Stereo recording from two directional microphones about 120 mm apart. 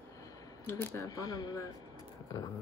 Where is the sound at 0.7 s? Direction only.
25° left (ahead or behind).